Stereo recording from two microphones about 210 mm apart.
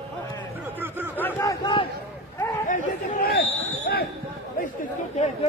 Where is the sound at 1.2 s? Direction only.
10° left (ahead or behind).